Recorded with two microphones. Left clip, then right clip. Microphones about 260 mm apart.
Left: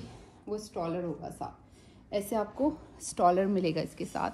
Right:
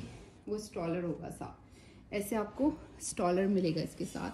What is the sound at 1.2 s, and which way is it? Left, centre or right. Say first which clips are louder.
Speech: left 5 dB; centre.